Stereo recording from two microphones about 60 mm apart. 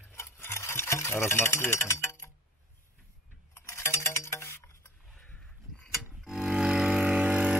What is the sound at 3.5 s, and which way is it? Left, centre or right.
Music, left.